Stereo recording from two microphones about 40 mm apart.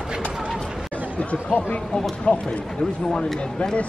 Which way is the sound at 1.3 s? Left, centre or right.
Left.